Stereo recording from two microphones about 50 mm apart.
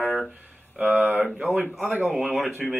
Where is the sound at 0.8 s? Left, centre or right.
Right.